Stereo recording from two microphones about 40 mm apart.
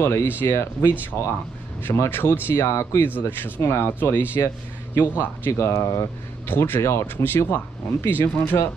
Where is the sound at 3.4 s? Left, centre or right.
Left.